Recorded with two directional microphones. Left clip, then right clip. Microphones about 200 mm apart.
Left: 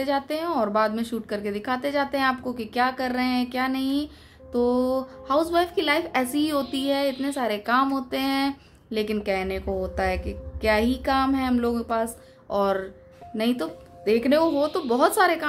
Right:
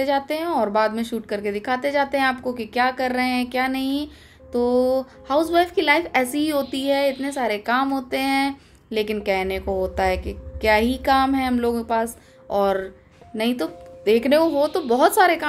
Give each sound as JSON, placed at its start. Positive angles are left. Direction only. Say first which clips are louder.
{"t": 0.0, "sound": "a woman's voice", "louder": "right 4 dB", "side_deg": 0}